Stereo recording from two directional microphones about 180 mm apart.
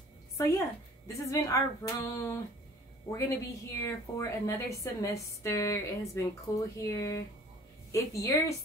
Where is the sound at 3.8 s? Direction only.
15° left (ahead or behind).